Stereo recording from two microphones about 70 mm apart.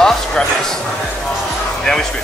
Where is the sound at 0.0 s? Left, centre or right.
Centre.